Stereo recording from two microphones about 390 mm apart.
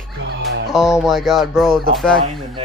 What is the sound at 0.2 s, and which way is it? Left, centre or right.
Music, right.